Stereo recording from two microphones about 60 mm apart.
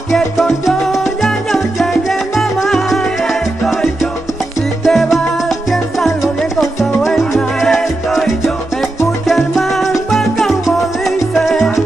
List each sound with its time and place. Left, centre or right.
0.1 s salsa music: centre
3.0 s music: centre
4.8 s music: centre
5.7 s salsa music: centre
7.1 s salsa music: centre
9.3 s music: centre
11.3 s salsa music: centre